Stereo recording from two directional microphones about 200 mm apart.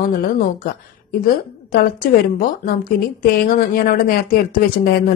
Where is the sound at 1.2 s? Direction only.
50° left (ahead or behind).